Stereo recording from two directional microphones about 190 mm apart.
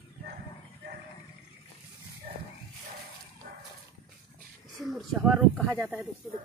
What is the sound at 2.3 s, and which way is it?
Dog, 45° right (ahead or behind).